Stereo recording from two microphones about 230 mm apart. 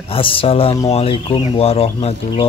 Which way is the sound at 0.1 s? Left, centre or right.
Left.